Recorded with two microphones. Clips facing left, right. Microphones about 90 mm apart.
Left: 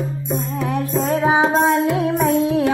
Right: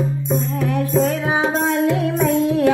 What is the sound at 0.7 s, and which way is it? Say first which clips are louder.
Music: right 1 dB; 30° left (ahead or behind).